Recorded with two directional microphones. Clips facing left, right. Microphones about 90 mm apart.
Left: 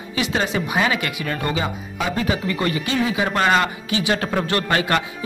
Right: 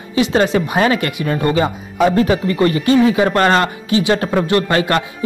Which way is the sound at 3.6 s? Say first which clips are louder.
Right 6 dB; 30° right (ahead or behind).